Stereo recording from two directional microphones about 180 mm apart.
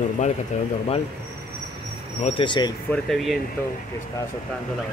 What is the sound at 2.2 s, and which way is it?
Speech, 25° left (ahead or behind).